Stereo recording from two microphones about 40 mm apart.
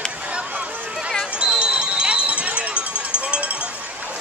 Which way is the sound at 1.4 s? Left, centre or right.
Right.